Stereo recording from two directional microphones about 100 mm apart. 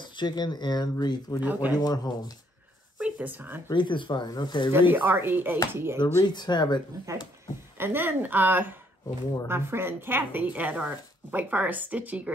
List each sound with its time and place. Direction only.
0.0 s speech: 50° left (ahead or behind)
1.4 s speech: 15° right (ahead or behind)
1.8 s speech: 40° left (ahead or behind)
3.0 s speech: 15° right (ahead or behind)
3.7 s speech: 50° left (ahead or behind)
4.7 s a woman's voice: 20° right (ahead or behind)
5.9 s speech: 45° left (ahead or behind)
7.1 s a woman's voice: 30° right (ahead or behind)